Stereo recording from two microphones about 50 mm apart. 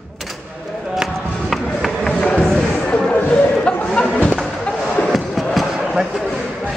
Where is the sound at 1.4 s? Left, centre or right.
Centre.